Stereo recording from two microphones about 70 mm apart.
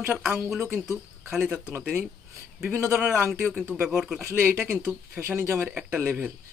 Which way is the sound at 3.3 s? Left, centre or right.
Centre.